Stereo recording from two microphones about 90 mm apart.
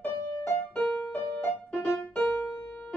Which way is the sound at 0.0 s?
20° left (ahead or behind).